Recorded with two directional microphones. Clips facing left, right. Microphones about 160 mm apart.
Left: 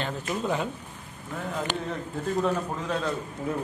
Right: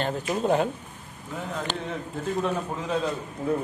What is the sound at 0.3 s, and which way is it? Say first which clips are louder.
Speech: right 5 dB; 45° right (ahead or behind).